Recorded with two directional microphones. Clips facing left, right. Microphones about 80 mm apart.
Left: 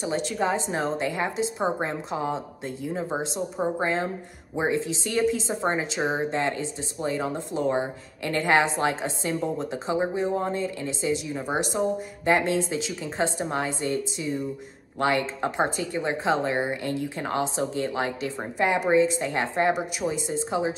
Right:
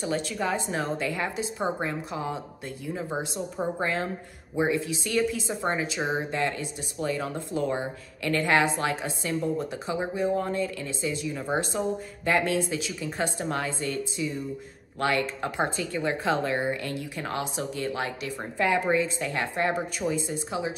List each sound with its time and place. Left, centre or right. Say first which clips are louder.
0.0 s a woman's voice: left 2 dB; left
3.5 s a woman's voice: left 3 dB; centre
3.8 s a woman's voice: left 2 dB; left